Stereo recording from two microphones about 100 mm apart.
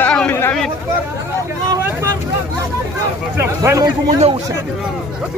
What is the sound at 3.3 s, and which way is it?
Speech, 25° right (ahead or behind).